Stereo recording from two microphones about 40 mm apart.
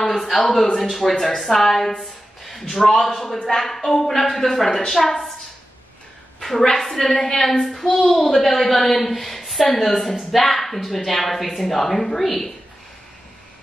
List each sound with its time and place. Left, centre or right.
0.0 s a man's voice: centre
6.4 s a woman's voice: centre